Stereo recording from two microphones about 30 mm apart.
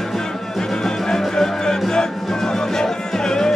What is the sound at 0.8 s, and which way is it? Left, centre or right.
Music, centre.